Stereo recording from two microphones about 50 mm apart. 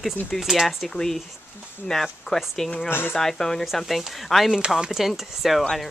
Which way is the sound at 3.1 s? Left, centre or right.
Centre.